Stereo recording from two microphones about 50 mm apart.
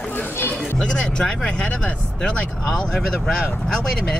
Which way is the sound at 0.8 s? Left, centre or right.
Centre.